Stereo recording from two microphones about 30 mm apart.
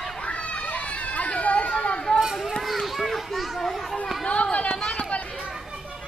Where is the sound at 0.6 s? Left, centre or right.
Left.